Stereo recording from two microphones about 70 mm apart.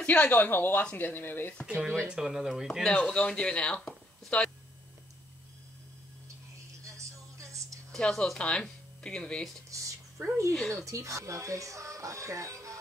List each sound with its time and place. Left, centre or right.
0.0 s speech: left
1.7 s speech: centre
2.9 s speech: centre
7.9 s speech: centre
9.7 s a sound: right
10.9 s speech: right